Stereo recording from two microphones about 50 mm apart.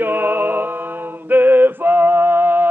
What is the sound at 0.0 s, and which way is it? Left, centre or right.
Music, right.